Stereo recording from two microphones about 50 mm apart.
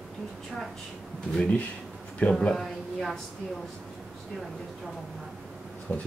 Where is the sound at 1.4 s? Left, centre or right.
Left.